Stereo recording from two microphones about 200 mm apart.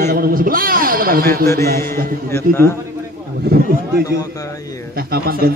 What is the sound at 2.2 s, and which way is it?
Speech, 10° left (ahead or behind).